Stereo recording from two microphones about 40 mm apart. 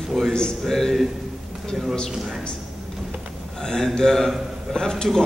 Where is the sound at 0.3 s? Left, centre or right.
Centre.